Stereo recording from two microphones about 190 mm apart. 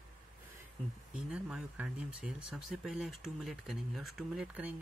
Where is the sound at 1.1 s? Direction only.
5° right (ahead or behind).